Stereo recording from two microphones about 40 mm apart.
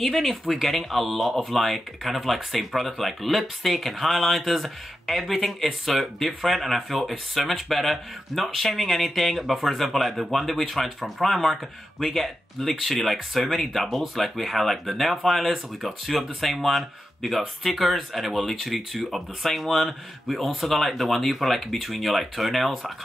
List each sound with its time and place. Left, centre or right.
0.0 s speech: centre